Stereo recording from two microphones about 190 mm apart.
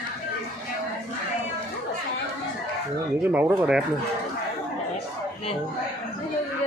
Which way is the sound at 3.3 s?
10° right (ahead or behind).